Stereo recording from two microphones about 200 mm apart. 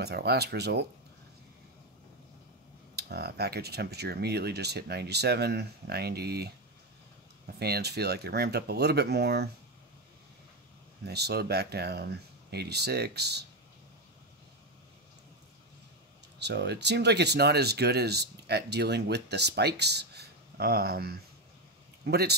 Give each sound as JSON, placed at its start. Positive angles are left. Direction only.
{"t": 0.0, "sound": "speech", "side_deg": -55}
{"t": 3.0, "sound": "speech", "side_deg": -55}
{"t": 11.1, "sound": "speech", "side_deg": -55}
{"t": 16.3, "sound": "speech", "side_deg": -60}